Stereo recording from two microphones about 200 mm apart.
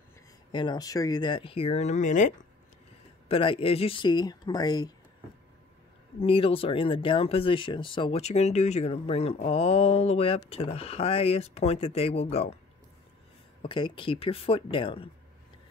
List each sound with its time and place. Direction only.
0.5 s speech: 25° left (ahead or behind); by 2.3 s 40° left (ahead or behind)
3.3 s speech: 25° left (ahead or behind)
6.1 s speech: 25° left (ahead or behind)
13.6 s speech: 25° left (ahead or behind)